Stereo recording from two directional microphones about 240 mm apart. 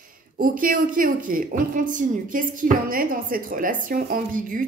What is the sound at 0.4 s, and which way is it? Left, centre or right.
Speech, right.